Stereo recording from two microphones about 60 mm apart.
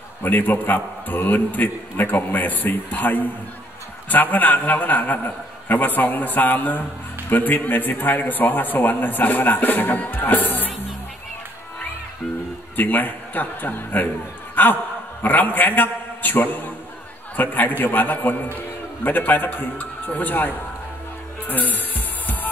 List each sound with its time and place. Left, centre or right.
0.2 s a man's voice: left
12.7 s a man's voice: left
14.5 s a sound: left
15.2 s a man's voice: left
21.5 s music: left